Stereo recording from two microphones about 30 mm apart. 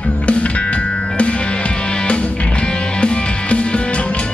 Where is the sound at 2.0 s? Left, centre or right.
Left.